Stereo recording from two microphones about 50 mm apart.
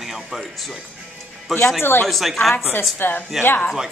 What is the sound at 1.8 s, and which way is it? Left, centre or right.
Speech, left.